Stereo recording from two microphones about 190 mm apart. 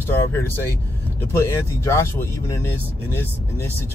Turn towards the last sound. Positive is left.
turn(degrees=10)  # may be behind; listen again after turning